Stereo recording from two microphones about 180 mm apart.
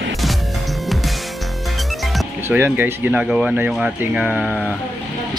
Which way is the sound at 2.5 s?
10° right (ahead or behind).